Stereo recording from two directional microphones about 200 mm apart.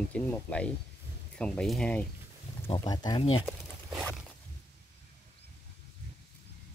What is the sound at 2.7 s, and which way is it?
Speech, 20° left (ahead or behind).